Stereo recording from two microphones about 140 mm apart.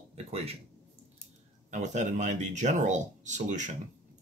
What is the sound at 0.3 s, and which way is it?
Speech, 45° right (ahead or behind).